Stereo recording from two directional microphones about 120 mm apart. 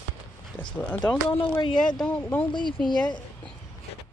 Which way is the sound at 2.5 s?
40° left (ahead or behind).